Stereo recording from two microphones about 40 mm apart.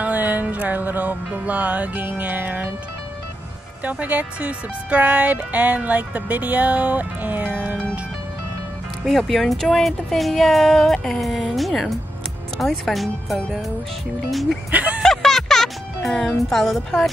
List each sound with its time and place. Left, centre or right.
0.0 s music: right
2.0 s music: right
4.0 s speech: right
7.4 s speech: right
9.1 s speech: centre
15.0 s music: centre